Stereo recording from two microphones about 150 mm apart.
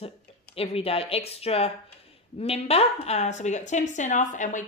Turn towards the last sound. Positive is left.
turn(degrees=55)  # may be behind; listen again after turning